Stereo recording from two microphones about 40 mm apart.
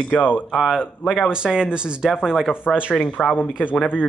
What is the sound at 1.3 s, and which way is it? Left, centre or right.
Speech, right.